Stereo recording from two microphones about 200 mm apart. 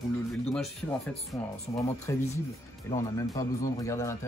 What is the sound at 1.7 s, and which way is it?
Speech, 15° left (ahead or behind).